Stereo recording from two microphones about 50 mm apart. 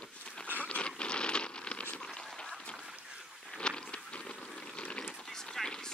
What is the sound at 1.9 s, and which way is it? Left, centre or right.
Goose, centre.